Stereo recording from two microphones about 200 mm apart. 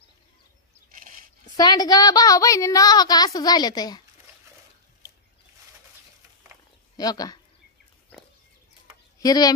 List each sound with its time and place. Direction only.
0.9 s a sound: 40° right (ahead or behind)
1.6 s a woman's voice: 20° left (ahead or behind)
7.0 s a woman's voice: 20° left (ahead or behind)
9.2 s speech: 20° left (ahead or behind)